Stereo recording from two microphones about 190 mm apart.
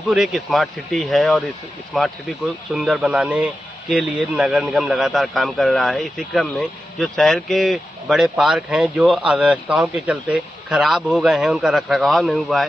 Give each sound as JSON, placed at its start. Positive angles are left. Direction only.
{"t": 0.1, "sound": "a man's voice", "side_deg": 0}